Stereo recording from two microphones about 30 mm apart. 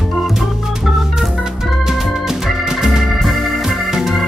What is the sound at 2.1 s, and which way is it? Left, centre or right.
Organ, centre.